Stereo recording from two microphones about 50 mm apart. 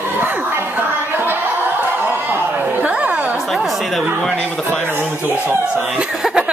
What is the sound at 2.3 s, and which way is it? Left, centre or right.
Chatter, right.